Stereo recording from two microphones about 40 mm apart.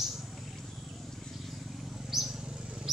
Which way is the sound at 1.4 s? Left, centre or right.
Centre.